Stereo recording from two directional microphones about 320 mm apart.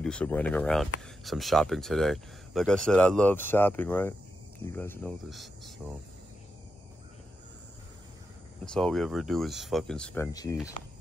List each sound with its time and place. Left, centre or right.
0.0 s speech: centre
8.7 s speech: centre